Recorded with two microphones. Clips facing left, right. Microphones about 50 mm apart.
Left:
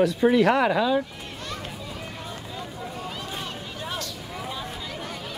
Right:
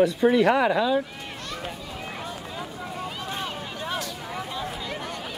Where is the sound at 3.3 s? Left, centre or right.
Centre.